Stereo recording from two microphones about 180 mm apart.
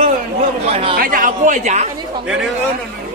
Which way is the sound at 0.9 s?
50° right (ahead or behind).